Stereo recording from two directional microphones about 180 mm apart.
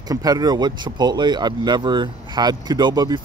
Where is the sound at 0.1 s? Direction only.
20° right (ahead or behind).